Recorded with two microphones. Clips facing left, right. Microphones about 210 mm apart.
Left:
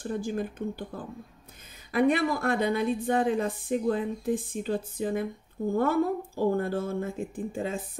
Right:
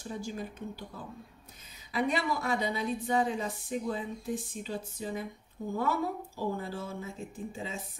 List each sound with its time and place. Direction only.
0.0 s speech: 55° left (ahead or behind)